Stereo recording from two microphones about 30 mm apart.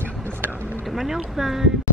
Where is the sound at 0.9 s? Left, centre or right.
Centre.